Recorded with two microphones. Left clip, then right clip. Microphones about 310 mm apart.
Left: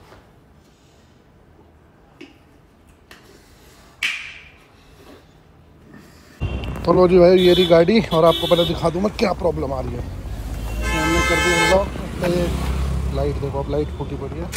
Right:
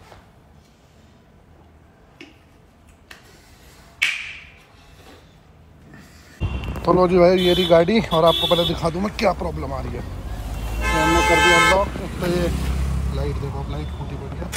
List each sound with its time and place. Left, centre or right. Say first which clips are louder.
6.4 s speech: even; centre
8.1 s speech: left 1 dB; right
10.8 s music: right 2 dB; centre
11.1 s vehicle: right 2 dB; centre
11.6 s vehicle: even; centre